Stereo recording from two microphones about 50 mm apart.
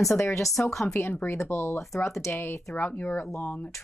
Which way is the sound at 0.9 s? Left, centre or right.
Left.